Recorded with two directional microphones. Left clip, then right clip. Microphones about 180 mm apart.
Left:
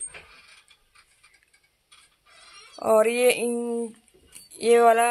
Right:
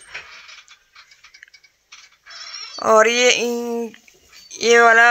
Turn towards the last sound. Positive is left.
turn(degrees=0)  # may be behind; listen again after turning